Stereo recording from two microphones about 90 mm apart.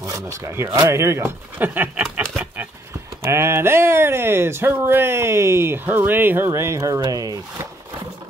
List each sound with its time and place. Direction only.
0.0 s speech: 35° right (ahead or behind); by 2.0 s 20° right (ahead or behind)
2.1 s a sound: 20° right (ahead or behind)
3.3 s speech: 30° right (ahead or behind)
6.8 s speech: 45° right (ahead or behind)